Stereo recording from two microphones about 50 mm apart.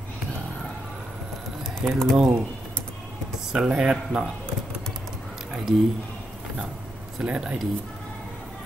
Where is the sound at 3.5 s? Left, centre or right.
Centre.